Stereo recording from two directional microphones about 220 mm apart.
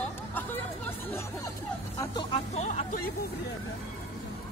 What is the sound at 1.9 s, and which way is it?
Speech, 15° left (ahead or behind).